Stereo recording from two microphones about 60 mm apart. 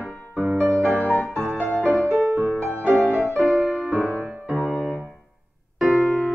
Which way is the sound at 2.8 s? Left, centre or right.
Right.